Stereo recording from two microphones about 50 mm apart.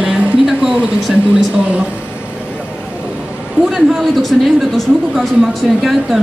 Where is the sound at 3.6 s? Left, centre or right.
Centre.